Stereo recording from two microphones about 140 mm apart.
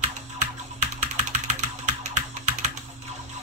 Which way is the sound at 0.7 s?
55° right (ahead or behind).